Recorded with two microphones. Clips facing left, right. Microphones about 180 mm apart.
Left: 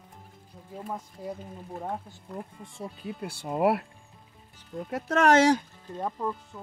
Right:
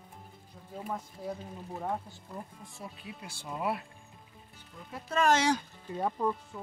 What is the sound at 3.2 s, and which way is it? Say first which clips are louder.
Speech: left 10 dB; 60° left (ahead or behind).